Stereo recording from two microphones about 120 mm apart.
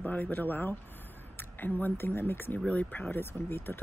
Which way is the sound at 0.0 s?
15° left (ahead or behind).